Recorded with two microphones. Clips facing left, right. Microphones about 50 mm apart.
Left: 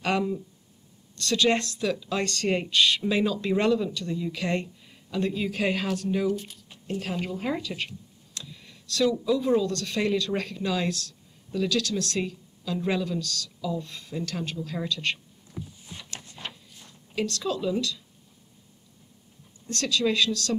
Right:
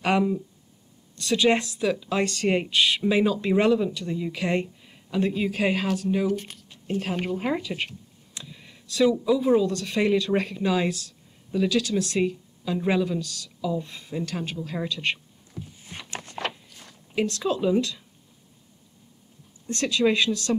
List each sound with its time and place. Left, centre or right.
0.0 s speech: centre
6.3 s speech: right
7.5 s speech: centre
16.2 s a sound: right
17.1 s speech: right
19.7 s speech: right